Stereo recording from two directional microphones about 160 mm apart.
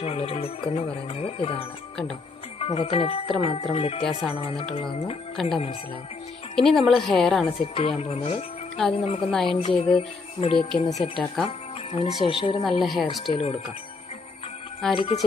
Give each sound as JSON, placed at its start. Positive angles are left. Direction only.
{"t": 0.0, "sound": "music", "side_deg": 40}
{"t": 5.3, "sound": "a woman's voice", "side_deg": 0}
{"t": 7.6, "sound": "music", "side_deg": 35}
{"t": 9.3, "sound": "a woman's voice", "side_deg": 5}
{"t": 9.6, "sound": "music", "side_deg": 40}
{"t": 10.7, "sound": "a woman's voice", "side_deg": 0}
{"t": 11.4, "sound": "speech", "side_deg": 35}
{"t": 12.3, "sound": "music", "side_deg": 35}
{"t": 12.8, "sound": "a woman's voice", "side_deg": 0}
{"t": 13.3, "sound": "music", "side_deg": 40}
{"t": 14.8, "sound": "a woman's voice", "side_deg": 5}